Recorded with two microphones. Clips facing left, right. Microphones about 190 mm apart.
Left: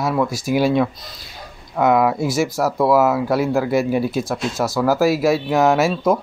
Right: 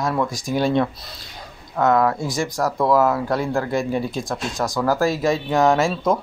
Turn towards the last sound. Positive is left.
turn(degrees=5)  # may be behind; listen again after turning